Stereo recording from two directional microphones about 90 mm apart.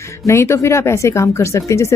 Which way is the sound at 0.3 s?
30° left (ahead or behind).